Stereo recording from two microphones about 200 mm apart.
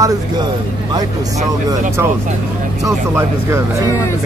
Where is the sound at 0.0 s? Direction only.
15° right (ahead or behind).